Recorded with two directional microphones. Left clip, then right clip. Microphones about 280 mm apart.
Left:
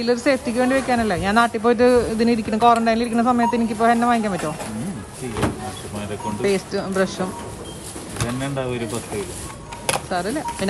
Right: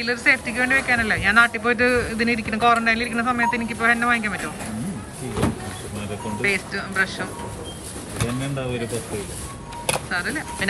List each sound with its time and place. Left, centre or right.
0.0 s speech: centre
5.4 s vehicle: centre
6.4 s speech: centre
10.0 s speech: centre